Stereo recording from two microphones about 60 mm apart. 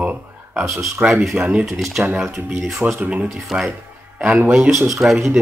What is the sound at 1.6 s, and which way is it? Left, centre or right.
Speech, centre.